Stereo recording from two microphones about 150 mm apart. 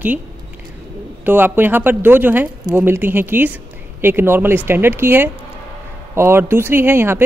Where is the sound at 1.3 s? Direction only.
15° right (ahead or behind).